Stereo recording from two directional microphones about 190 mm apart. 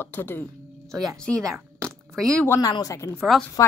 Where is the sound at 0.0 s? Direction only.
10° left (ahead or behind).